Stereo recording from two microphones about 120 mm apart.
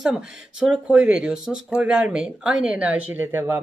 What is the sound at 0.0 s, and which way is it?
Speech, 5° right (ahead or behind).